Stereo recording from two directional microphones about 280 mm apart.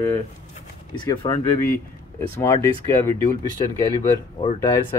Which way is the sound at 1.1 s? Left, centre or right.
Centre.